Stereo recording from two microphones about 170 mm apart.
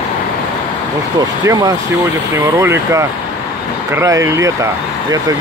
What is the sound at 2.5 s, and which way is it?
Speech, 15° right (ahead or behind).